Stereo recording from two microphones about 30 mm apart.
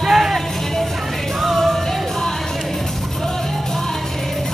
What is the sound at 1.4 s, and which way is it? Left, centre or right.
Music, centre.